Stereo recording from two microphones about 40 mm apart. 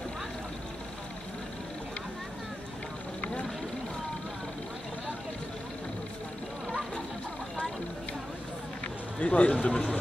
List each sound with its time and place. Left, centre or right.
9.2 s speech: left